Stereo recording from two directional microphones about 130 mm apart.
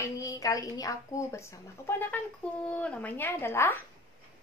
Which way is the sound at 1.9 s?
15° left (ahead or behind).